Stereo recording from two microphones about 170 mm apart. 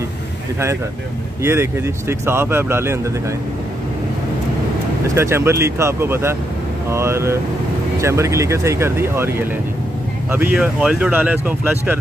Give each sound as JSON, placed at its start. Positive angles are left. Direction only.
{"t": 1.4, "sound": "speech", "side_deg": -15}
{"t": 5.0, "sound": "speech", "side_deg": -15}
{"t": 10.3, "sound": "speech", "side_deg": -5}